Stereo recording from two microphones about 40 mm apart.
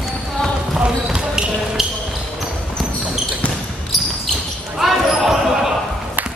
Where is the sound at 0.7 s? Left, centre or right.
Centre.